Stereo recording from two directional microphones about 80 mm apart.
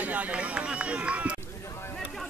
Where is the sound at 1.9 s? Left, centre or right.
Centre.